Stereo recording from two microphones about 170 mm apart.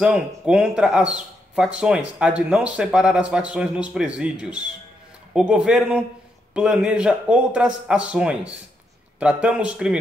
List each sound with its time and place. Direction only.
0.0 s speech: 5° right (ahead or behind)